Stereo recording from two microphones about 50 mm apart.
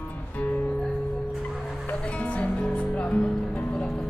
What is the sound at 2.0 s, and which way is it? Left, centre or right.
Music, left.